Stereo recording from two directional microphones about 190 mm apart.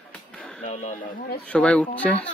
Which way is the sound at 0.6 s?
40° left (ahead or behind).